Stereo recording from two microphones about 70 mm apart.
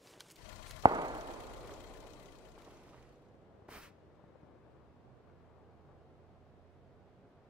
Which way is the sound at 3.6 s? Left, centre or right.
Centre.